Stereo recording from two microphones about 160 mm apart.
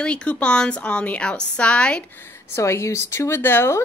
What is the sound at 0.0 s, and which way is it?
A woman's voice, 5° left (ahead or behind).